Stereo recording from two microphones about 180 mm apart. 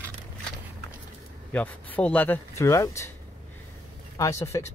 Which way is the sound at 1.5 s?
10° left (ahead or behind).